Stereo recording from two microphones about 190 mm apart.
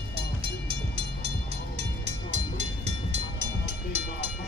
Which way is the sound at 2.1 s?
35° right (ahead or behind).